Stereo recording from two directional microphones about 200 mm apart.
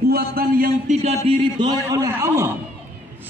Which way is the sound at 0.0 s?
50° right (ahead or behind).